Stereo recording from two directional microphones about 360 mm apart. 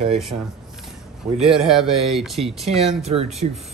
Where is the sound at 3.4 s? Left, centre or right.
Centre.